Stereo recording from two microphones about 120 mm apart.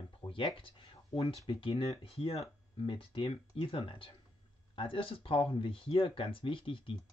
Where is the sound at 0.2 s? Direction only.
40° left (ahead or behind).